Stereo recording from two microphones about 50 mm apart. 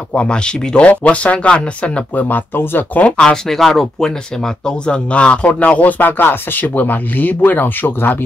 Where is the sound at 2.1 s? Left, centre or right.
Left.